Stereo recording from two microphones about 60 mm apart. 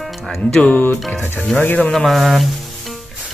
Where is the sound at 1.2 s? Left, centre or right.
Left.